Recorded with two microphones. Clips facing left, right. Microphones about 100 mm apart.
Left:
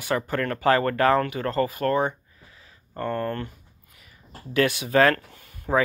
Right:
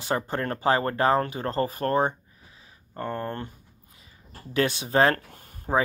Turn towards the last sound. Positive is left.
turn(degrees=-30)  # may be behind; listen again after turning